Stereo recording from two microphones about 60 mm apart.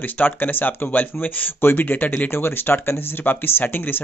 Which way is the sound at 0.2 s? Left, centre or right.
Left.